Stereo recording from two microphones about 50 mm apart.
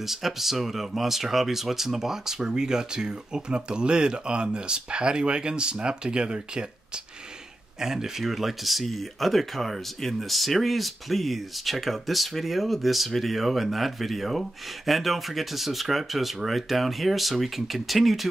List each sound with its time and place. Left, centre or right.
0.0 s speech: centre
7.8 s speech: centre